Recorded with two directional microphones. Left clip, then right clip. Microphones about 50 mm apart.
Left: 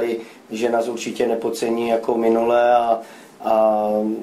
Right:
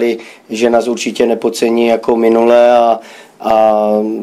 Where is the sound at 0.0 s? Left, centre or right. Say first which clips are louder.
Right 8 dB; right.